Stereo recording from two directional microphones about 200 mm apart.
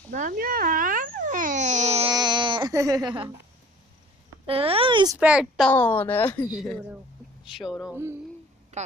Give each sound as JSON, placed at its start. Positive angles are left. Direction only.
{"t": 0.1, "sound": "babbling", "side_deg": -40}
{"t": 2.0, "sound": "a sound", "side_deg": -20}
{"t": 4.5, "sound": "a child's voice", "side_deg": -30}
{"t": 5.2, "sound": "speech", "side_deg": -5}
{"t": 5.7, "sound": "a woman's voice", "side_deg": 10}
{"t": 6.5, "sound": "speech", "side_deg": 0}
{"t": 8.7, "sound": "a sound", "side_deg": -35}